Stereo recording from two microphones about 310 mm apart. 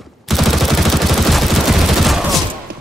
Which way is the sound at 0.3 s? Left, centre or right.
Centre.